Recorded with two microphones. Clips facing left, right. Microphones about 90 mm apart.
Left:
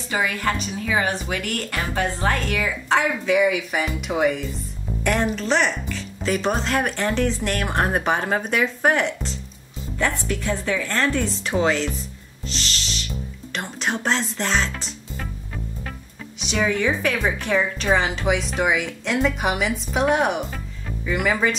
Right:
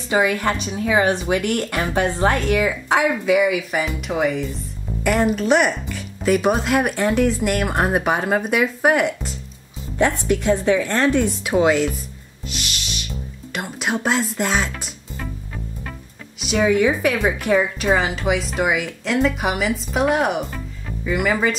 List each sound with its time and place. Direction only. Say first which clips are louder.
0.1 s speech: right 5 dB; 20° right (ahead or behind)
3.0 s speech: right 3 dB; 5° right (ahead or behind)
9.9 s a woman's voice: right 6 dB; 20° right (ahead or behind)
12.4 s music: even; 10° right (ahead or behind)
13.5 s speech: right 2 dB; 5° right (ahead or behind)
16.3 s speech: right 5 dB; 5° right (ahead or behind)